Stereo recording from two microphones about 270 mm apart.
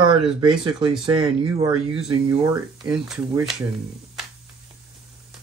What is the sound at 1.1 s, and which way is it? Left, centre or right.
Speech, centre.